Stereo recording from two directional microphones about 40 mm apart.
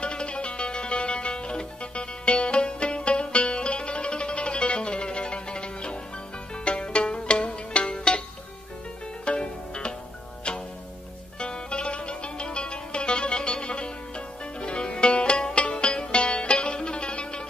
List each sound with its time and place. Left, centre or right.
0.0 s music: left
9.2 s music: left
11.3 s music: left